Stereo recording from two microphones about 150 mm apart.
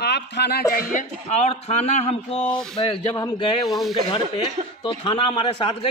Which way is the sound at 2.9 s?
30° left (ahead or behind).